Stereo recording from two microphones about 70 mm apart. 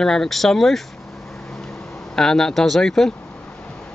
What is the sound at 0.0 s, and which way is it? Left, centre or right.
Speech, centre.